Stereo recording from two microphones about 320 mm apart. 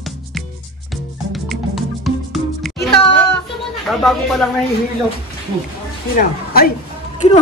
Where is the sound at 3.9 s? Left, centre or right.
Centre.